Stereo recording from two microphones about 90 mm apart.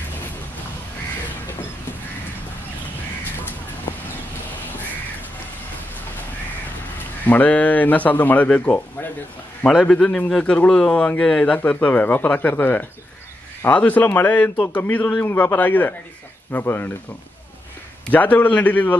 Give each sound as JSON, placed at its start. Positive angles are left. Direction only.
{"t": 7.2, "sound": "a man's voice", "side_deg": 20}
{"t": 18.1, "sound": "a man's voice", "side_deg": 15}